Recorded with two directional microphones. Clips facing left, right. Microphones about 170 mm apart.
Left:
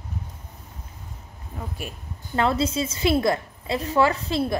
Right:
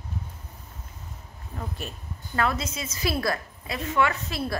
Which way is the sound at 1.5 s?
5° left (ahead or behind).